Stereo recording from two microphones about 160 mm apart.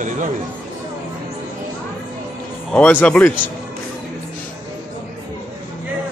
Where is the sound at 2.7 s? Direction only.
10° left (ahead or behind).